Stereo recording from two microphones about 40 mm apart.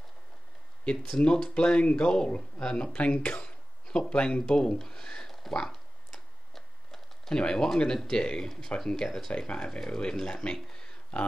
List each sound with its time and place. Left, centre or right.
1.1 s speech: centre
5.5 s a sound: centre
7.3 s speech: centre